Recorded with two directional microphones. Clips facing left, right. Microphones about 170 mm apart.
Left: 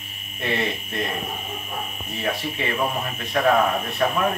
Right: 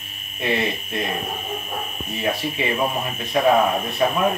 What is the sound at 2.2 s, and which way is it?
Speech, 15° right (ahead or behind).